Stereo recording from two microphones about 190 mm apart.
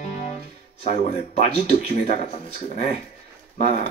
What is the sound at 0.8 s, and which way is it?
Speech, 35° left (ahead or behind).